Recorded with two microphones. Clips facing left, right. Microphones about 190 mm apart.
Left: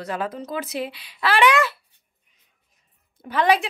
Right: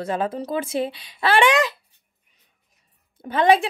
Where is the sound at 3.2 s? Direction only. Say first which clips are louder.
Right 3 dB; 25° right (ahead or behind).